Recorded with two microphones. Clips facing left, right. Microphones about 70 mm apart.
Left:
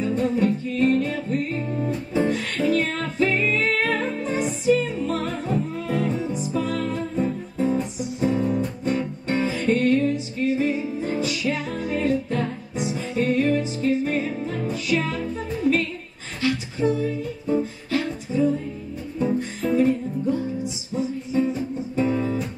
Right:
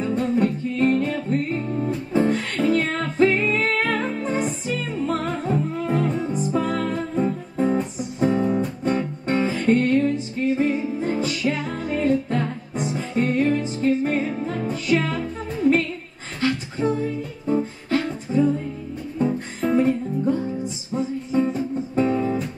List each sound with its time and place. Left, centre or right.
0.4 s music: right
1.7 s music: centre
2.1 s music: right
16.3 s music: right
19.6 s music: right
22.1 s guitar: right